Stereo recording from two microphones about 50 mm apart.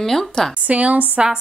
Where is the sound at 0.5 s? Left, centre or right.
Right.